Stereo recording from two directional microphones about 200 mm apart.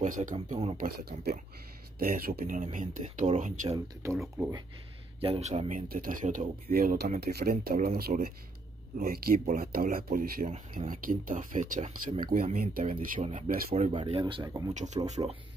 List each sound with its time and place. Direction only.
0.0 s speech: 40° right (ahead or behind)
0.7 s speech: 50° right (ahead or behind)
3.7 s speech: 15° right (ahead or behind)
5.2 s speech: 30° right (ahead or behind)
13.8 s speech: 30° right (ahead or behind)
14.7 s speech: 35° right (ahead or behind)